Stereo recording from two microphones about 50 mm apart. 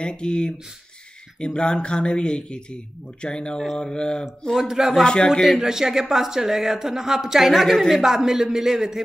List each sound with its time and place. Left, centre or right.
0.0 s mantra: centre
1.4 s speech: centre
3.7 s mantra: centre
4.6 s speech: centre
5.0 s mantra: centre
5.6 s speech: centre